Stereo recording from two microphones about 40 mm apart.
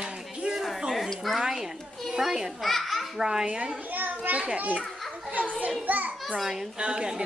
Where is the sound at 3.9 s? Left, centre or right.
Right.